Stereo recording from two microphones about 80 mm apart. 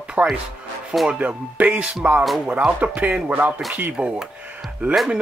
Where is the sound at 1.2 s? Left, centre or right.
Centre.